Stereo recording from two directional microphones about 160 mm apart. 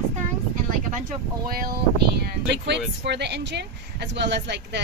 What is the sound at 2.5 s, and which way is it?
Speech, 90° right.